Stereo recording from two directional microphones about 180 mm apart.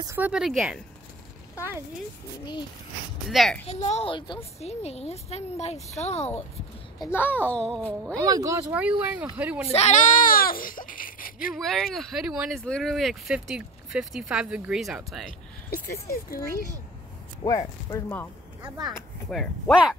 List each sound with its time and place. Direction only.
0.0 s speech: 15° right (ahead or behind)
0.3 s speech: centre (ahead or behind)
3.3 s speech: centre (ahead or behind)
3.6 s a woman's voice: 35° left (ahead or behind)
7.0 s a child's voice: 10° left (ahead or behind)
8.2 s speech: 20° right (ahead or behind)
9.7 s speech: 40° left (ahead or behind)
11.5 s speech: centre (ahead or behind)
15.7 s speech: 55° left (ahead or behind)
17.4 s speech: 20° left (ahead or behind)
18.6 s speech: 20° right (ahead or behind)
19.3 s speech: centre (ahead or behind)